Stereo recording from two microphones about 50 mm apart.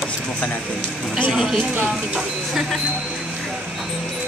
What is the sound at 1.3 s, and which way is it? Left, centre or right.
Speech, centre.